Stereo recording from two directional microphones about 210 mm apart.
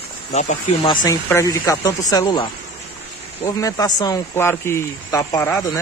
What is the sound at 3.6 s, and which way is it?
Speech, 15° left (ahead or behind).